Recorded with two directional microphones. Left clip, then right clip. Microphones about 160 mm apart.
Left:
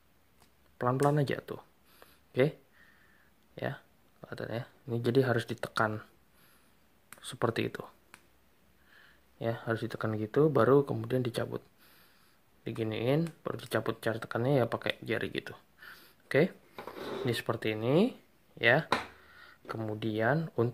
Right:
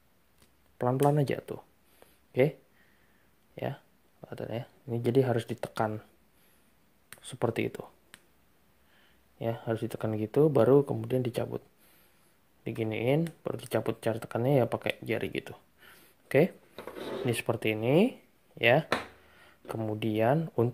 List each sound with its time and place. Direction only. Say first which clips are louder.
0.7 s speech: right 2 dB; 15° right (ahead or behind)
3.5 s speech: right 1 dB; 10° right (ahead or behind)
7.1 s speech: right 1 dB; 5° right (ahead or behind)
9.4 s speech: right 1 dB; 10° right (ahead or behind)
11.4 s a sound: right 2 dB; 10° right (ahead or behind)
12.6 s speech: right 2 dB; 10° right (ahead or behind)
19.4 s a sound: right 2 dB; 25° right (ahead or behind)
20.2 s speech: right 3 dB; 15° right (ahead or behind)